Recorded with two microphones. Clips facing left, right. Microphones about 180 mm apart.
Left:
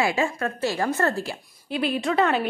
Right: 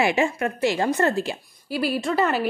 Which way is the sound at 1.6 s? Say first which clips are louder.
Even; 5° right (ahead or behind).